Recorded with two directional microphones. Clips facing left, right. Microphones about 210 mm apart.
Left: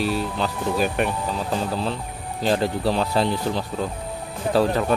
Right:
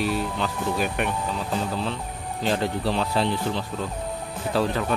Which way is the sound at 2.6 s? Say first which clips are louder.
Left 3 dB; 40° left (ahead or behind).